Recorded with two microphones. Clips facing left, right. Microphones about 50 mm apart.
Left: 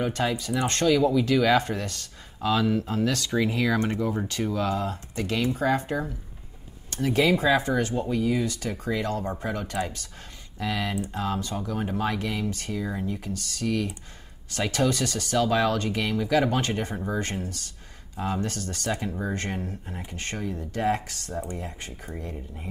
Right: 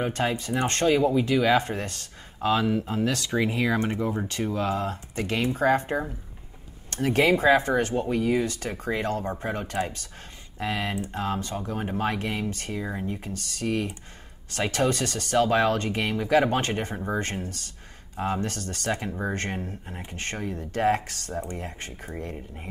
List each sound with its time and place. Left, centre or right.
0.0 s speech: right